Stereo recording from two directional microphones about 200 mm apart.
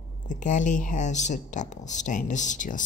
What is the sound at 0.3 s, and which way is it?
Speech, 40° left (ahead or behind).